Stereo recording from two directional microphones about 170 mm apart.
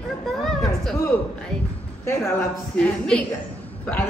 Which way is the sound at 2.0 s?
15° left (ahead or behind).